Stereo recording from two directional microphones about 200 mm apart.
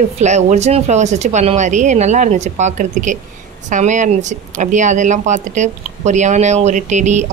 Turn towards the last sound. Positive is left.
turn(degrees=-35)  # may be behind; listen again after turning